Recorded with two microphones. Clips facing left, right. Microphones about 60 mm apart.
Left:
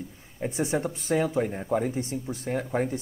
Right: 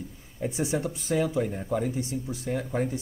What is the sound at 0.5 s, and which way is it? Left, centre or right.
A man's voice, left.